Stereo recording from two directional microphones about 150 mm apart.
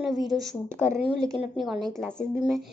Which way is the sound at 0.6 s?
15° right (ahead or behind).